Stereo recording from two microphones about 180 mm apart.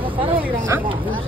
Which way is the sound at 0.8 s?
30° right (ahead or behind).